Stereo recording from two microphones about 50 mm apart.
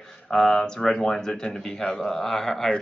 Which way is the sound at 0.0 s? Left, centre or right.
Centre.